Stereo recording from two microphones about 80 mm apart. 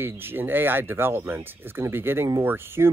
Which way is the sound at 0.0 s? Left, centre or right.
Right.